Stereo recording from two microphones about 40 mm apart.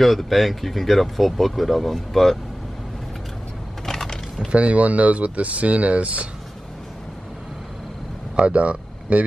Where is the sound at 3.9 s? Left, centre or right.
Centre.